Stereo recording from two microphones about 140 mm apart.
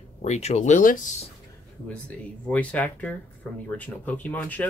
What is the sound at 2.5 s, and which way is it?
Speech, 10° left (ahead or behind).